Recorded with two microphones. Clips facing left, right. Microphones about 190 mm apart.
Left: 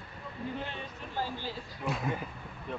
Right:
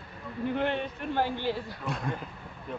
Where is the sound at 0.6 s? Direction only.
65° right (ahead or behind).